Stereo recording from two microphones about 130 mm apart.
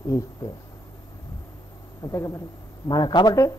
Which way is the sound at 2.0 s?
25° left (ahead or behind).